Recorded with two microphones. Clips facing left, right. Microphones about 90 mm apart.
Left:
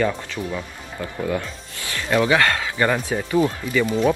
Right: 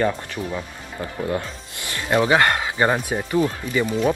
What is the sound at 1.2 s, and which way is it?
Speech, 30° right (ahead or behind).